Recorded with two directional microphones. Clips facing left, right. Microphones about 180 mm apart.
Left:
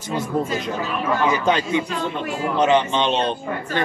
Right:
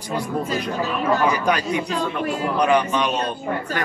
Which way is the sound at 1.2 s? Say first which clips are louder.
Left 1 dB; 25° left (ahead or behind).